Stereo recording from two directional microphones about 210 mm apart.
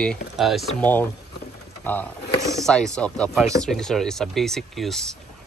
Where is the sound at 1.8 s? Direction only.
10° left (ahead or behind).